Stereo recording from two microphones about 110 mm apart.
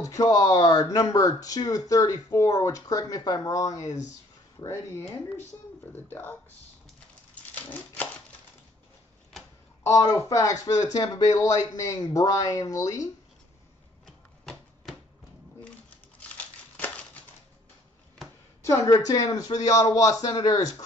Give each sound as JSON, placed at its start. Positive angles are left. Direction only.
{"t": 0.0, "sound": "speech", "side_deg": 30}
{"t": 3.8, "sound": "speech", "side_deg": 90}
{"t": 4.6, "sound": "speech", "side_deg": 25}
{"t": 7.5, "sound": "typewriter", "side_deg": 15}
{"t": 9.8, "sound": "speech", "side_deg": 30}
{"t": 16.2, "sound": "crumpling", "side_deg": 10}
{"t": 18.6, "sound": "speech", "side_deg": 30}